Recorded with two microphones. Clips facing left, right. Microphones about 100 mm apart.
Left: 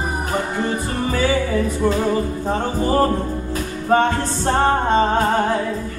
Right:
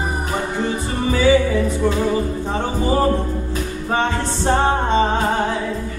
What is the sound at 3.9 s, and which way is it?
Music, 45° left (ahead or behind).